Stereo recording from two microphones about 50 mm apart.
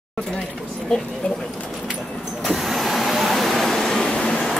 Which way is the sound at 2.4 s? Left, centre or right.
Centre.